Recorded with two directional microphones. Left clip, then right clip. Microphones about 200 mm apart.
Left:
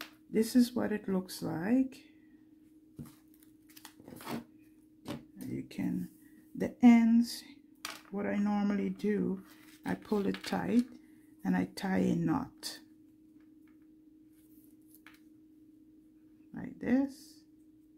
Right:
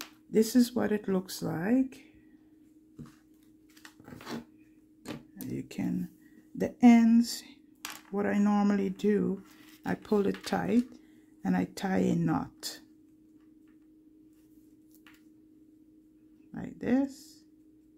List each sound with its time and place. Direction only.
0.3 s speech: 20° right (ahead or behind)
5.5 s speech: 20° right (ahead or behind)
16.5 s a sound: 10° right (ahead or behind)